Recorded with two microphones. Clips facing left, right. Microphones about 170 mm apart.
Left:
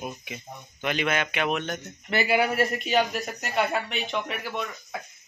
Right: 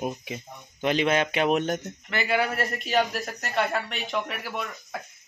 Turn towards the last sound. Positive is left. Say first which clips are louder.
# left 1 dB
turn(degrees=0)  # may be behind; listen again after turning